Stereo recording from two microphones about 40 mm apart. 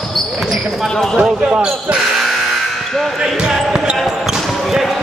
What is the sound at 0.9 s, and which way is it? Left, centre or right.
Basketball bounce, centre.